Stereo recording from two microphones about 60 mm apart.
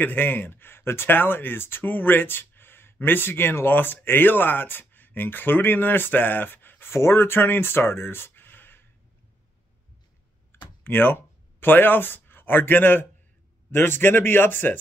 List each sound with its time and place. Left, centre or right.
0.0 s speech: left
10.5 s computer keyboard: left
11.6 s a man's voice: left